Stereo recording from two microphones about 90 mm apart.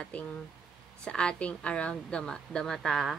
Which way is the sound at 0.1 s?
15° left (ahead or behind).